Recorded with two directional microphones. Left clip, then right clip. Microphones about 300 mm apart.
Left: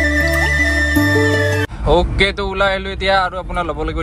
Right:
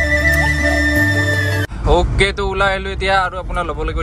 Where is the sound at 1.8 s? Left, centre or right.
Centre.